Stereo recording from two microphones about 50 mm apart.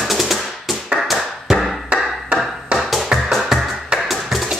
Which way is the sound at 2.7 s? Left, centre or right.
Centre.